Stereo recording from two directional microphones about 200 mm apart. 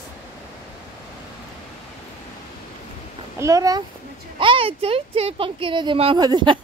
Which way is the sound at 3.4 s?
15° right (ahead or behind).